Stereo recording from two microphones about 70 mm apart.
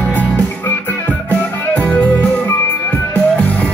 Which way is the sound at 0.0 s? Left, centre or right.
Left.